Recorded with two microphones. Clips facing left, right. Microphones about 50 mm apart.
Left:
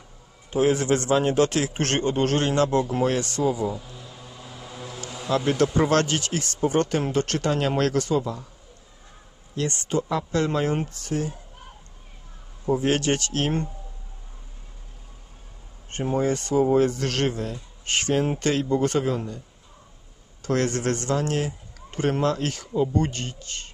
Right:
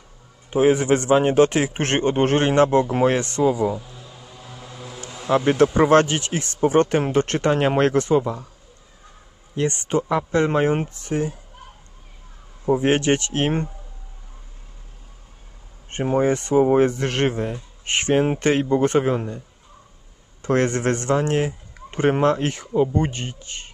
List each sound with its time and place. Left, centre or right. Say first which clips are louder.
0.5 s speech: right 4 dB; right
3.8 s vehicle: even; centre
5.3 s speech: right 5 dB; right
9.6 s speech: right 4 dB; right
12.6 s speech: right 4 dB; right
15.9 s speech: right 4 dB; right
20.4 s speech: right 4 dB; right